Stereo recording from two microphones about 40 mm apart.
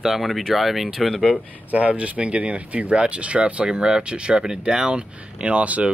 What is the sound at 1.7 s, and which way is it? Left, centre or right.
Speech, right.